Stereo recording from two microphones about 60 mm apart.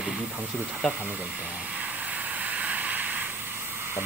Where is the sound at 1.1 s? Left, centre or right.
Right.